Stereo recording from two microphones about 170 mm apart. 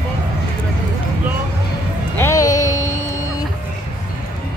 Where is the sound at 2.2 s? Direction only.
20° left (ahead or behind).